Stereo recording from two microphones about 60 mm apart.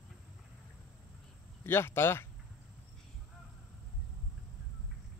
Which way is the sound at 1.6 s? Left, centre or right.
Left.